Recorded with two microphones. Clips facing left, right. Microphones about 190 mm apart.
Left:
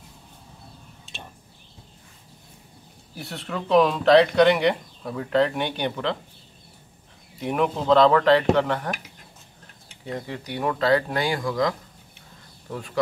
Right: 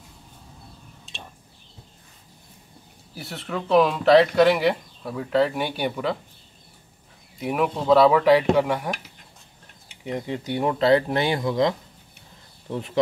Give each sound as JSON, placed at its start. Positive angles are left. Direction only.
{"t": 1.0, "sound": "a sound", "side_deg": 0}
{"t": 3.2, "sound": "speech", "side_deg": 0}
{"t": 7.3, "sound": "speech", "side_deg": -5}
{"t": 10.0, "sound": "speech", "side_deg": -20}